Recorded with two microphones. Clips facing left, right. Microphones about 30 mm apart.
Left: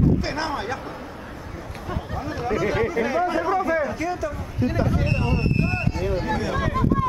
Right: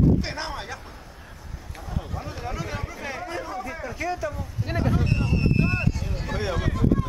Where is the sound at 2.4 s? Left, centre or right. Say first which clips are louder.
Left 13 dB; centre.